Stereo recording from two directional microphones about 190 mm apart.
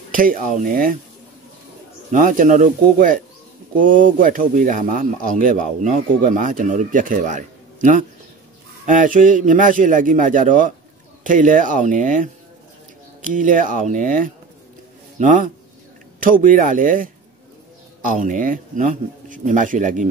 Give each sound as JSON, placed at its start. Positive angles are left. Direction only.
{"t": 0.1, "sound": "speech", "side_deg": -45}
{"t": 2.0, "sound": "speech", "side_deg": -45}